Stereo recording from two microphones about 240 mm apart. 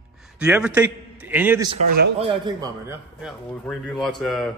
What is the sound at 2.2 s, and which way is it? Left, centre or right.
Speech, centre.